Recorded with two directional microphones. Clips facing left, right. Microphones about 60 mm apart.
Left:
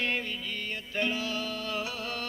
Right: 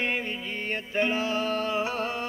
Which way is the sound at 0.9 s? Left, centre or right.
Right.